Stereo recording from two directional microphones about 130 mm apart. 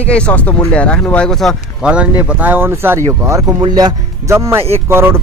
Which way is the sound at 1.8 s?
10° right (ahead or behind).